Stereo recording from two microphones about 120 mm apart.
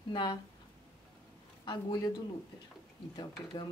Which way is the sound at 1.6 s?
35° left (ahead or behind).